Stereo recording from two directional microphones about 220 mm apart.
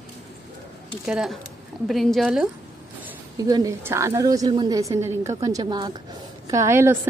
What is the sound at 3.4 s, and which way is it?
A woman's voice, 15° right (ahead or behind).